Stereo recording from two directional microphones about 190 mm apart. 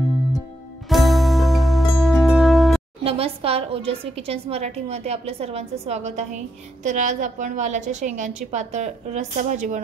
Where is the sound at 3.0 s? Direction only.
30° right (ahead or behind).